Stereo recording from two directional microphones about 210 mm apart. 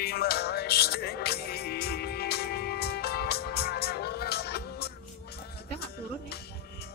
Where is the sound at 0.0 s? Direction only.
50° left (ahead or behind).